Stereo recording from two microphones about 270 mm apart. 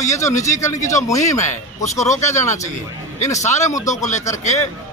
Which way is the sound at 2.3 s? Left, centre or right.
Centre.